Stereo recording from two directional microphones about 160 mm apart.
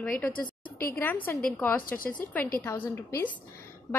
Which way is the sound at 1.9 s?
60° left (ahead or behind).